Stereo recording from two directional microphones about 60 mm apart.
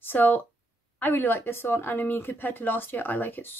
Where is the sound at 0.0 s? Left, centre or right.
Left.